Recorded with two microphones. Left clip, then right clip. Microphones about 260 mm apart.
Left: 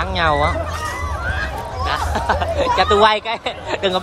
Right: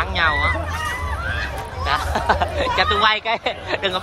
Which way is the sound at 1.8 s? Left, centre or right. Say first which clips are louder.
Even; centre.